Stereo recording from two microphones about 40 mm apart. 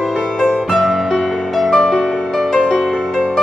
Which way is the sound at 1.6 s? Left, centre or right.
Centre.